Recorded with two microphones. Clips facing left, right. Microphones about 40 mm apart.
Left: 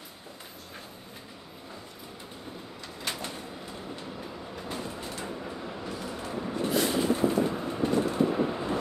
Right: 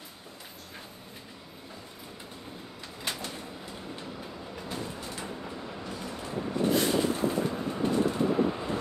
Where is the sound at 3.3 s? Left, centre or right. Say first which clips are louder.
Left 1 dB; centre.